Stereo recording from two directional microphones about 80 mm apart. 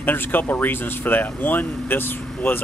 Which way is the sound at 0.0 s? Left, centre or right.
Left.